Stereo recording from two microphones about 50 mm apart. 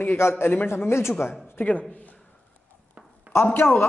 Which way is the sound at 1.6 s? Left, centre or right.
Left.